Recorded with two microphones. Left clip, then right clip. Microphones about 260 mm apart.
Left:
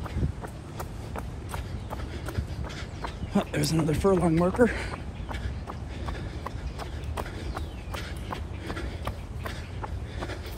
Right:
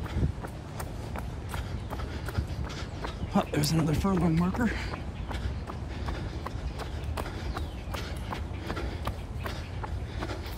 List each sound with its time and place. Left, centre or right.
3.3 s speech: centre
6.4 s run: centre
7.9 s a sound: centre